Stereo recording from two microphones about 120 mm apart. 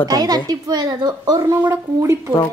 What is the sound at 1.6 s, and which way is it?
Speech, 20° right (ahead or behind).